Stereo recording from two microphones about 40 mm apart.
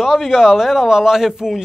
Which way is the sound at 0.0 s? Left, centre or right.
Centre.